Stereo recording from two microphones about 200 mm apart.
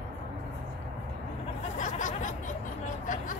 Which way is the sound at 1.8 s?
40° left (ahead or behind).